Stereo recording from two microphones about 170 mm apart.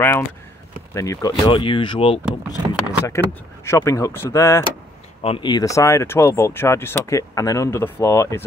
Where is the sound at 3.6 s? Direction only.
15° left (ahead or behind).